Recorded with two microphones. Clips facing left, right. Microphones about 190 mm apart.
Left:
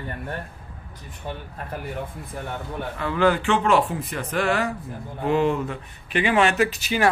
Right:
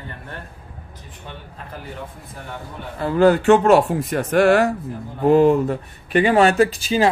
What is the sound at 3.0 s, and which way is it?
Speech, 40° right (ahead or behind).